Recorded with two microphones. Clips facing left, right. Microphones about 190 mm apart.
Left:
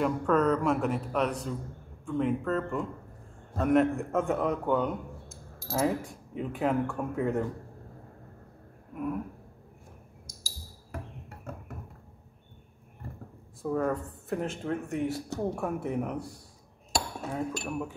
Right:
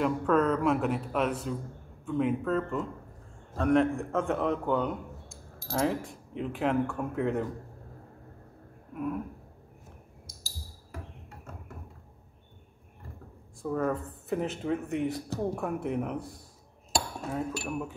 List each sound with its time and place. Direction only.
0.0 s a man's voice: centre (ahead or behind)
10.2 s a sound: 45° left (ahead or behind)
13.6 s a man's voice: centre (ahead or behind)